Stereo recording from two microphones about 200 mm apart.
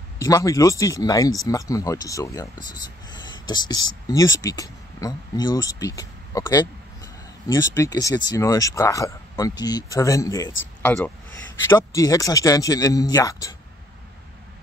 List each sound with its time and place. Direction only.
0.2 s speech: 15° left (ahead or behind)